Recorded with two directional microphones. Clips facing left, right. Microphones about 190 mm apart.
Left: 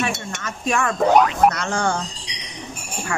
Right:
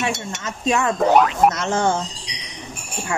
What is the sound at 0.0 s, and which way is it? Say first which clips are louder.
Speech: right 1 dB; 20° right (ahead or behind).